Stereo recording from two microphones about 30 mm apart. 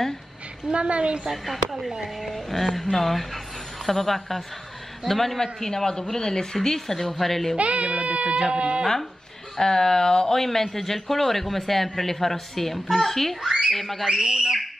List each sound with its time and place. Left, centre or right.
0.7 s a woman's voice: right
1.3 s speech: centre
2.1 s a man's voice: centre
7.0 s a man's voice: centre
7.5 s a woman's voice: right
9.6 s speech: left
10.3 s a man's voice: centre
13.4 s speech: centre
13.7 s speech: centre
14.2 s a woman's voice: right